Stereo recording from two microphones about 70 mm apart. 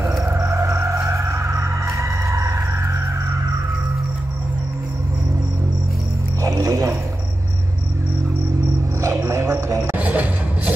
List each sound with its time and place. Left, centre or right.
0.1 s music: right
6.4 s dog: right
9.1 s music: right
9.9 s a sound: right